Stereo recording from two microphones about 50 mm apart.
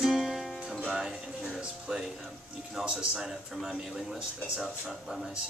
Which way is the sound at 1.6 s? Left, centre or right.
Centre.